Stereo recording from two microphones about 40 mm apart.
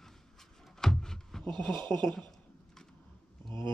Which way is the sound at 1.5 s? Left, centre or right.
Centre.